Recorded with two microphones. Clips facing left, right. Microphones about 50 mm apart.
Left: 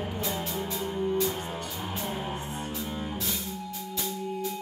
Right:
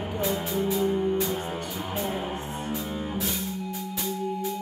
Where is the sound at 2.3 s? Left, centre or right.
Right.